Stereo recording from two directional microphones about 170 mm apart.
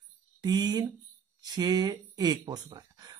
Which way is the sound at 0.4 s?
25° right (ahead or behind).